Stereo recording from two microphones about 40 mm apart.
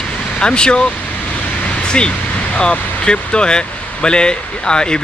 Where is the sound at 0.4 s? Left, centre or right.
Left.